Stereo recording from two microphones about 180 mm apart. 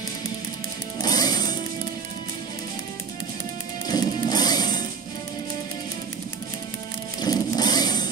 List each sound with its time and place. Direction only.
1.0 s music: 20° left (ahead or behind)
3.8 s music: 20° left (ahead or behind)
7.2 s a sound: 20° left (ahead or behind)